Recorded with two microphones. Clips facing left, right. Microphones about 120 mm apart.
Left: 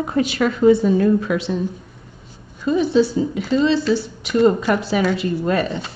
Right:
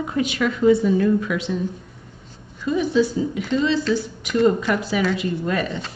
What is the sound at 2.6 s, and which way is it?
A woman's voice, 30° left (ahead or behind).